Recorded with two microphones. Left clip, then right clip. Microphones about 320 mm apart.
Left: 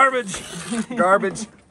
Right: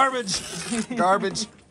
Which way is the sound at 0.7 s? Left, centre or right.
Centre.